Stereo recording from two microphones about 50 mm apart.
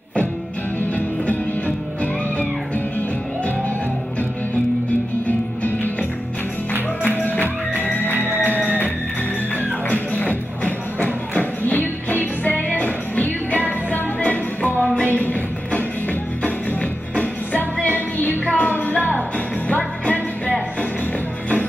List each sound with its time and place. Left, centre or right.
5.6 s music: left
7.2 s music: left
18.7 s music: left